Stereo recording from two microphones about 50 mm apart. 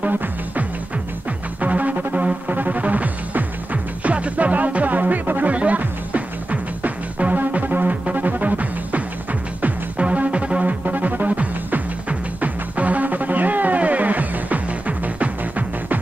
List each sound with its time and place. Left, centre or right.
0.0 s music: right